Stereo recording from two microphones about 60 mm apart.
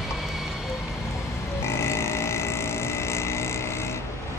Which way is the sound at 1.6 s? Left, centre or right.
Left.